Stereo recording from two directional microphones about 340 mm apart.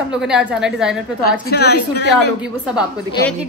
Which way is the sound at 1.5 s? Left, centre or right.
Left.